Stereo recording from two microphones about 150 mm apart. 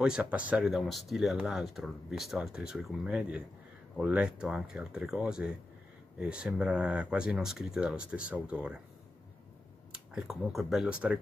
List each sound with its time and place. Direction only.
0.0 s speech: 5° right (ahead or behind)
9.9 s speech: 5° right (ahead or behind)